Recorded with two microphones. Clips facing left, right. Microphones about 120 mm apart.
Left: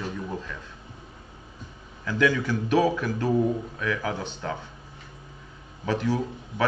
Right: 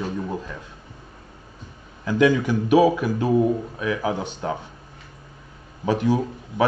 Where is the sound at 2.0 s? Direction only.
20° right (ahead or behind).